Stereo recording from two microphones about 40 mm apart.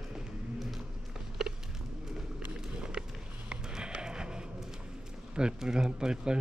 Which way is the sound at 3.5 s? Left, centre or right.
Right.